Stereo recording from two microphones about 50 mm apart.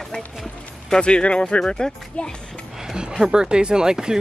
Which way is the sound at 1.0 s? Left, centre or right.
Centre.